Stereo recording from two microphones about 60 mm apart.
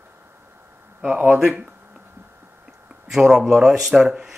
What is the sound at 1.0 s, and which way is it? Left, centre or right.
Speech, right.